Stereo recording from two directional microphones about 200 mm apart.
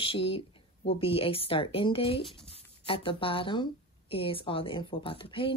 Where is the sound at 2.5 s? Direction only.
25° left (ahead or behind).